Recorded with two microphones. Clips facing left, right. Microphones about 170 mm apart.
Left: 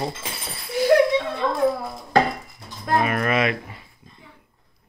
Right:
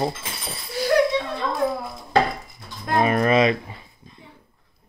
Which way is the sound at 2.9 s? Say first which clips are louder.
Right 3 dB; 30° right (ahead or behind).